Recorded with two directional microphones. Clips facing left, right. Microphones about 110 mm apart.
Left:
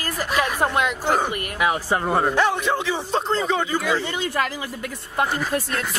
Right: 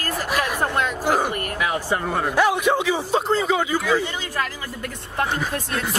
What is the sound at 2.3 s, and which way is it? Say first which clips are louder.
A man's voice: right 2 dB; 10° right (ahead or behind).